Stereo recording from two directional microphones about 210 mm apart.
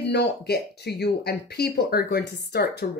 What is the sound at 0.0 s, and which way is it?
Speech, 50° left (ahead or behind).